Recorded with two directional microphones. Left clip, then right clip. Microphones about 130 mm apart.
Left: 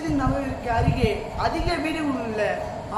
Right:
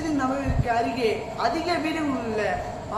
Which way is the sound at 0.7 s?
5° right (ahead or behind).